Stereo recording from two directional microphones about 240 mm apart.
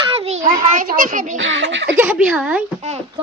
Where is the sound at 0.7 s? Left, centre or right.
Right.